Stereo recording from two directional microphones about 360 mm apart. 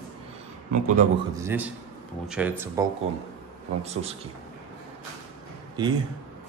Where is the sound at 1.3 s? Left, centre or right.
Centre.